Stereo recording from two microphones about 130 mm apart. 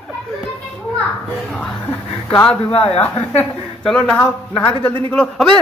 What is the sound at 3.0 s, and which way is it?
Speech, 15° left (ahead or behind).